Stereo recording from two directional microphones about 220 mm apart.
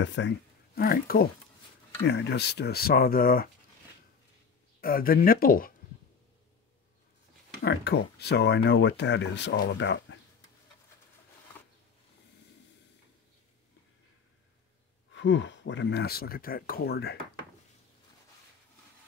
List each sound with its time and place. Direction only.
0.0 s speech: 55° left (ahead or behind)
0.7 s speech: 40° left (ahead or behind)
4.8 s speech: 40° left (ahead or behind)
7.6 s speech: 50° left (ahead or behind)
15.1 s speech: 55° left (ahead or behind)